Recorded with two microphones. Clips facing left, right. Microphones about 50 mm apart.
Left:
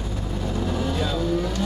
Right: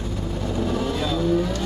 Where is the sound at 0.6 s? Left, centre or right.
Centre.